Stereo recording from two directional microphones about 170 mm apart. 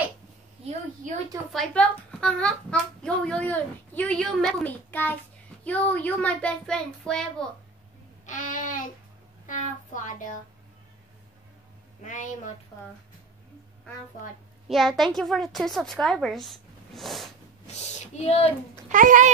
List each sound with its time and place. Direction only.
1.5 s a child's voice: 5° left (ahead or behind)
8.3 s speech: 50° left (ahead or behind)
12.0 s speech: 50° left (ahead or behind)
14.7 s a child's voice: centre (ahead or behind)
17.6 s speech: 40° left (ahead or behind)
18.9 s a child's voice: 50° right (ahead or behind)